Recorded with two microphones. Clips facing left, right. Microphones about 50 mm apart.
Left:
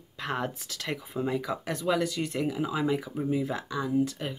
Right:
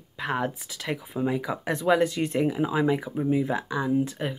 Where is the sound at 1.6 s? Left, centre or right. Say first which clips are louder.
Right 7 dB; right.